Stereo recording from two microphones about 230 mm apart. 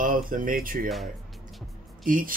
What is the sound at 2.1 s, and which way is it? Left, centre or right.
Speech, right.